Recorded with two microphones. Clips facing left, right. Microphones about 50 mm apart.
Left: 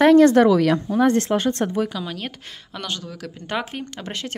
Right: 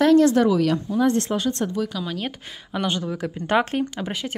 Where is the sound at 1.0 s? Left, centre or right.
Left.